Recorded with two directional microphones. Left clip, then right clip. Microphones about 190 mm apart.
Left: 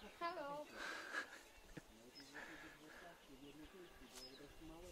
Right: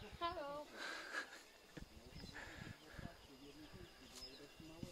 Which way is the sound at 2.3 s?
Centre (ahead or behind).